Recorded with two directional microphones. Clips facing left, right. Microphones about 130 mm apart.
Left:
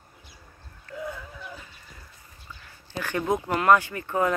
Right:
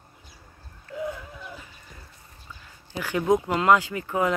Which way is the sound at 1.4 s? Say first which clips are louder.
Even; 5° right (ahead or behind).